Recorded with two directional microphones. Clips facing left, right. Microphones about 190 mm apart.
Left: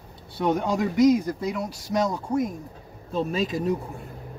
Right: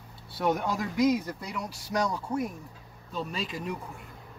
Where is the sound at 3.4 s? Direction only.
40° left (ahead or behind).